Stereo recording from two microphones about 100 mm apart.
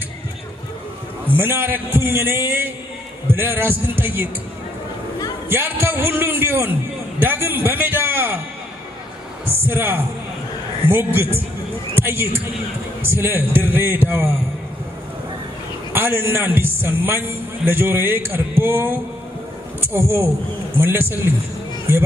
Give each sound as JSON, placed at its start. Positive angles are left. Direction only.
{"t": 1.2, "sound": "a man's voice", "side_deg": -20}
{"t": 5.5, "sound": "a man's voice", "side_deg": -20}
{"t": 9.5, "sound": "a man's voice", "side_deg": -20}
{"t": 11.1, "sound": "a man's voice", "side_deg": -20}
{"t": 15.9, "sound": "a man's voice", "side_deg": -20}